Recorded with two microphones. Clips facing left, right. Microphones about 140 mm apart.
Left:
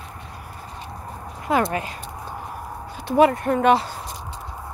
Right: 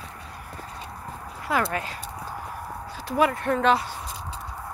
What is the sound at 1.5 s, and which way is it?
Speech, 20° left (ahead or behind).